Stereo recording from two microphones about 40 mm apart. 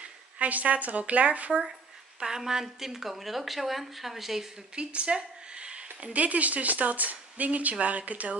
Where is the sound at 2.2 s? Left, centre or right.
Centre.